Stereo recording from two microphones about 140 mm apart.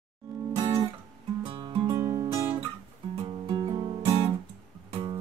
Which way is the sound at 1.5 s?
35° right (ahead or behind).